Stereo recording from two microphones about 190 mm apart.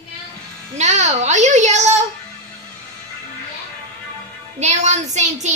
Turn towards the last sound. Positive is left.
turn(degrees=-40)  # may be behind; listen again after turning